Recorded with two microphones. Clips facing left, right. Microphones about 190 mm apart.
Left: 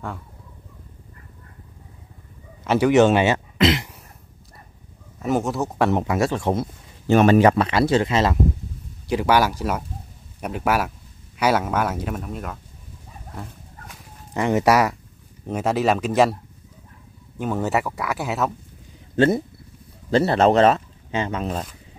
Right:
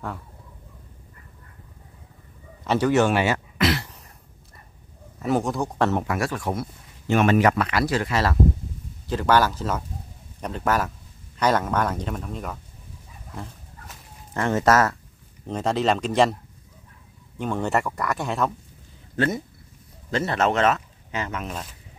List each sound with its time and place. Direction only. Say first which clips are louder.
2.6 s speech: left 3 dB; 5° left (ahead or behind)
2.9 s speech: left 5 dB; 20° left (ahead or behind)
5.2 s speech: left 1 dB; centre (ahead or behind)
5.9 s speech: left 4 dB; 20° left (ahead or behind); by 12.5 s 5° left (ahead or behind)
13.3 s dog: even; centre (ahead or behind)
14.3 s speech: left 2 dB; 15° left (ahead or behind)
17.4 s speech: left 1 dB; 5° left (ahead or behind)
19.1 s speech: left 7 dB; 30° left (ahead or behind)